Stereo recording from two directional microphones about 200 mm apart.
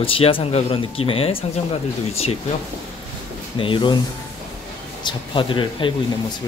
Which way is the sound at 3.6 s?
25° left (ahead or behind).